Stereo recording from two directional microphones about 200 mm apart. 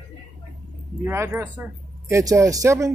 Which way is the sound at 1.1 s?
10° right (ahead or behind).